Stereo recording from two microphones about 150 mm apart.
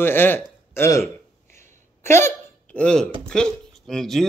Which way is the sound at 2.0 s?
15° left (ahead or behind).